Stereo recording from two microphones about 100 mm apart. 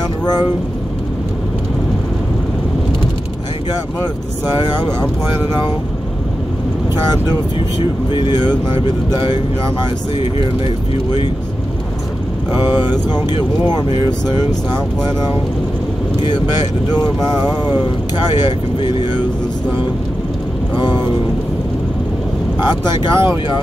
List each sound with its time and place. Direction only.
8.1 s speech: 50° left (ahead or behind)
12.9 s speech: 45° left (ahead or behind)
18.4 s speech: 50° left (ahead or behind)
22.8 s speech: 50° left (ahead or behind)